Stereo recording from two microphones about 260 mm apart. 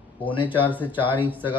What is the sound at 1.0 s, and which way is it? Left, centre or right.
Speech, centre.